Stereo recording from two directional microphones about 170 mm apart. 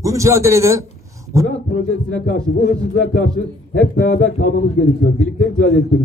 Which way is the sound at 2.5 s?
75° left (ahead or behind).